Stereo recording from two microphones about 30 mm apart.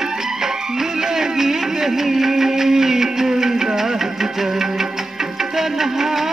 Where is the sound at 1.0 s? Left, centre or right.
Centre.